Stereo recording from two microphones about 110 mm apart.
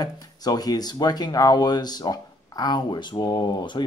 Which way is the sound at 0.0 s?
35° left (ahead or behind).